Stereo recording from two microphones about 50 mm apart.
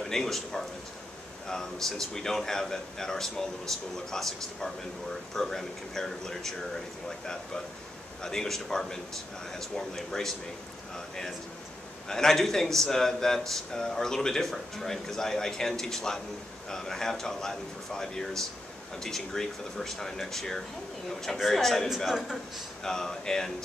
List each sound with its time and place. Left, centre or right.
0.0 s speech: centre
12.1 s a man's voice: centre
21.8 s a man's voice: centre
22.8 s speech: centre